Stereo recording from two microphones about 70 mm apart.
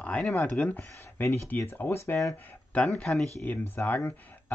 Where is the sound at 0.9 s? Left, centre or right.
Left.